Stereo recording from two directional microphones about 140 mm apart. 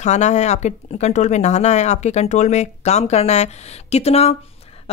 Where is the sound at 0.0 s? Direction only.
55° left (ahead or behind).